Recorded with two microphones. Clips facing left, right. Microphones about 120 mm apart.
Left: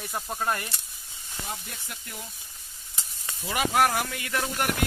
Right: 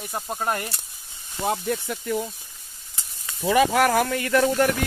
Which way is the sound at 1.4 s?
85° right.